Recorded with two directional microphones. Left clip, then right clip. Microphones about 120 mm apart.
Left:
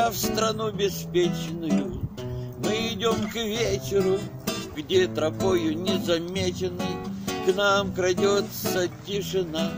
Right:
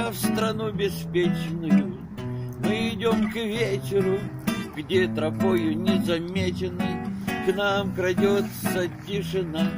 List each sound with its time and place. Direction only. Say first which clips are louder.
0.0 s music: left 3 dB; 45° left (ahead or behind)
2.7 s music: even; 45° left (ahead or behind)
4.0 s music: left 1 dB; 30° left (ahead or behind)
4.8 s music: left 1 dB; 45° left (ahead or behind)